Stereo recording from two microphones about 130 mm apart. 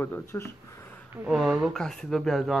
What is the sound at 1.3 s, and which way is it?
Speech, centre (ahead or behind).